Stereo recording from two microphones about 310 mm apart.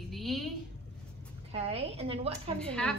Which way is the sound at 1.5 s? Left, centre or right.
Centre.